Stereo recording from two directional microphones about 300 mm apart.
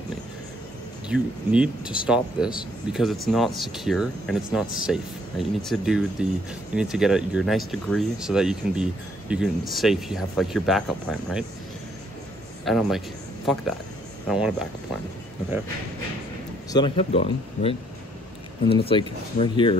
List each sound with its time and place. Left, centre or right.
1.0 s speech: centre
12.6 s speech: centre
14.2 s speech: centre
16.7 s speech: centre